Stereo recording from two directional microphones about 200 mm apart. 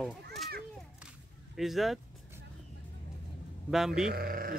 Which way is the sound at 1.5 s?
Centre (ahead or behind).